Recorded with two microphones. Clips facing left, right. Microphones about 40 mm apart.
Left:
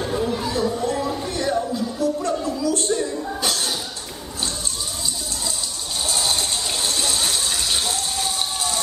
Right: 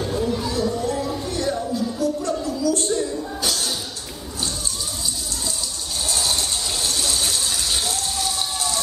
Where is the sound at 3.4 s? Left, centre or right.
Left.